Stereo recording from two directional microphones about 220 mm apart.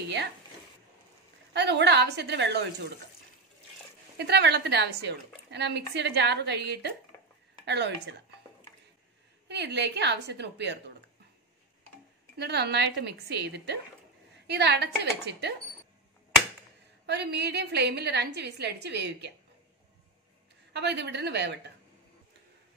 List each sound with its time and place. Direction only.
1.5 s a woman's voice: 50° right (ahead or behind)
4.2 s a woman's voice: 50° right (ahead or behind)
9.5 s a woman's voice: 50° right (ahead or behind)
12.4 s a woman's voice: 50° right (ahead or behind)
17.0 s a woman's voice: 50° right (ahead or behind)
20.7 s a woman's voice: 50° right (ahead or behind)